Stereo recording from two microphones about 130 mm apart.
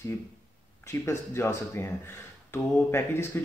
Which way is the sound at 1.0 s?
20° left (ahead or behind).